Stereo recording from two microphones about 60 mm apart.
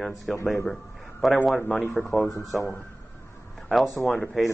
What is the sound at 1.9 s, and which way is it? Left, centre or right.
Speech, centre.